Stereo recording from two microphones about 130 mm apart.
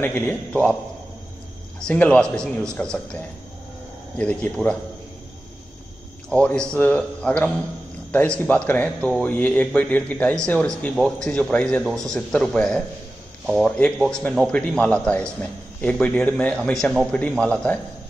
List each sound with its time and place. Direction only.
0.0 s a man's voice: 15° left (ahead or behind)
1.8 s a man's voice: 10° left (ahead or behind)
4.2 s a man's voice: 10° left (ahead or behind)
6.3 s a man's voice: 10° left (ahead or behind)